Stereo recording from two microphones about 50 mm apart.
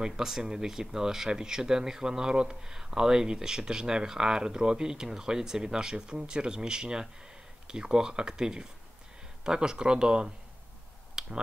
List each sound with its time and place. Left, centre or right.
0.0 s speech: centre
11.2 s finger snapping: centre